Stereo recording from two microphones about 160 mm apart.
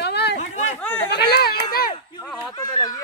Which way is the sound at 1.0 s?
90° left.